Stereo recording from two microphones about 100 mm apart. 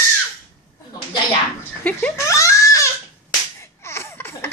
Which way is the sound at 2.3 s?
30° left (ahead or behind).